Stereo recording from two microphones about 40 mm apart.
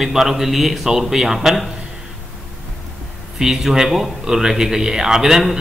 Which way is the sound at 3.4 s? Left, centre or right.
Centre.